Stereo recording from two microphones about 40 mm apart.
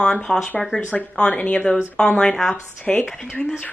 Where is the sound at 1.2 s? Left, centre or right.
Left.